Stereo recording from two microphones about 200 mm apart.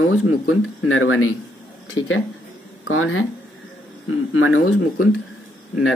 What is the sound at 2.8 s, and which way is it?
Speech, 90° left.